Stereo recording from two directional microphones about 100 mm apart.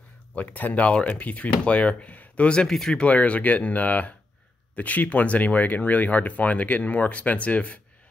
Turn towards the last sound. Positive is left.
turn(degrees=15)  # may be behind; listen again after turning